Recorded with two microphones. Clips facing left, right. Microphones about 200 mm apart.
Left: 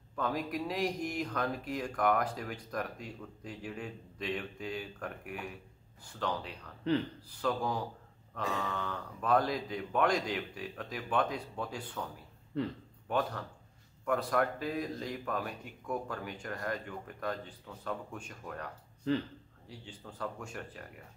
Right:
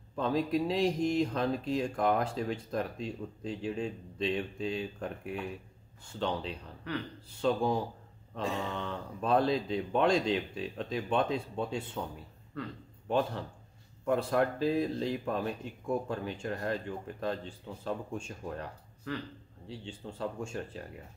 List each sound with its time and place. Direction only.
0.1 s speech: 25° right (ahead or behind)
13.1 s speech: 25° right (ahead or behind)
19.1 s a man's voice: 25° left (ahead or behind)
19.7 s speech: 25° right (ahead or behind)